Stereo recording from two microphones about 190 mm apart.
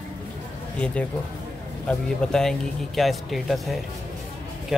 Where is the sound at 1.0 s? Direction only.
5° left (ahead or behind).